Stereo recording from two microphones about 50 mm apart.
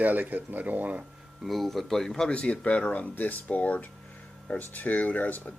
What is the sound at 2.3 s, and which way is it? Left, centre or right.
Speech, left.